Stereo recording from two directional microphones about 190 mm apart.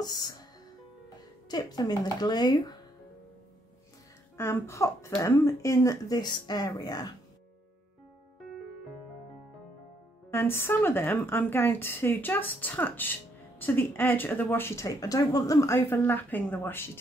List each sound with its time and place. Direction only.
0.0 s speech: 20° left (ahead or behind)
1.5 s speech: 20° left (ahead or behind)
4.4 s speech: 15° left (ahead or behind)
10.3 s speech: 10° left (ahead or behind)